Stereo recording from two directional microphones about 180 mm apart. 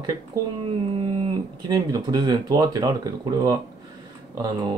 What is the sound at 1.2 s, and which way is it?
Speech, 25° right (ahead or behind).